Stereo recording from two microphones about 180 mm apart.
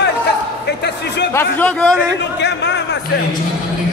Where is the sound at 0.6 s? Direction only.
70° left (ahead or behind).